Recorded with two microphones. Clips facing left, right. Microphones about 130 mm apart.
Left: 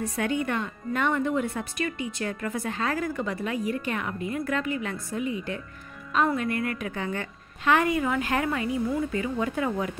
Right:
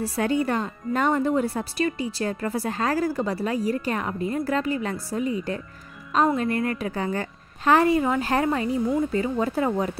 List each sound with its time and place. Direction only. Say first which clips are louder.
0.0 s speech: right 4 dB; 35° right (ahead or behind)